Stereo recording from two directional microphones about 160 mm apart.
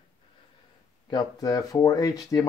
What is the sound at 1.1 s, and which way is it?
Speech, 25° left (ahead or behind).